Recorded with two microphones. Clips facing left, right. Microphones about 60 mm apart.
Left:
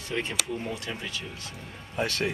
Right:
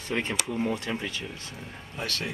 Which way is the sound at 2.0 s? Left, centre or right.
Left.